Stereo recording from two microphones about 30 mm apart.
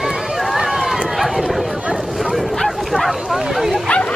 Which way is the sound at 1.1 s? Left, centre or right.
Centre.